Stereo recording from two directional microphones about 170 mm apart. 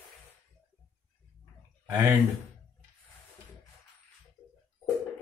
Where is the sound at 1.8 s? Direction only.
10° right (ahead or behind).